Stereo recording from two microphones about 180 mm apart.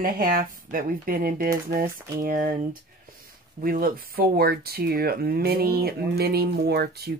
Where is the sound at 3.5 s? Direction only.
55° right (ahead or behind).